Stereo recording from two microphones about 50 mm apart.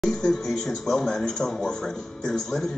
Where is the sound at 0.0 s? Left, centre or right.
Centre.